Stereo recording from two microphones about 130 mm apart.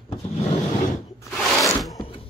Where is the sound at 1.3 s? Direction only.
Centre (ahead or behind).